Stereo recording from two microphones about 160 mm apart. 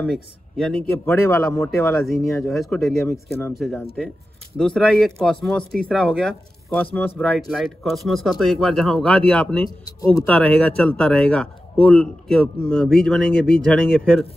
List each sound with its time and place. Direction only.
0.0 s speech: 5° left (ahead or behind)
2.4 s speech: centre (ahead or behind)